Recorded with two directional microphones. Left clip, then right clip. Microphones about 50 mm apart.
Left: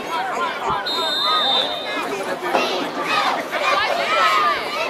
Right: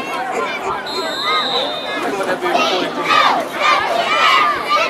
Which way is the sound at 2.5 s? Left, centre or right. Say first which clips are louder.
Right 2 dB; right.